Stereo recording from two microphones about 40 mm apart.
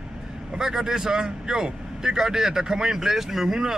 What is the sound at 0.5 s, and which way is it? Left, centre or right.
Speech, centre.